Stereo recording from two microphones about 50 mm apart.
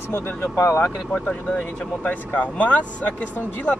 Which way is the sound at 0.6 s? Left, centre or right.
Left.